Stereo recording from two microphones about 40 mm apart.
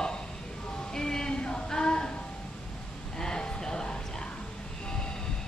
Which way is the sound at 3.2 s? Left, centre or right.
Centre.